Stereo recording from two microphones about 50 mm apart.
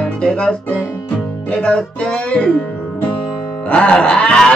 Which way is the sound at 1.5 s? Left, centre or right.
Centre.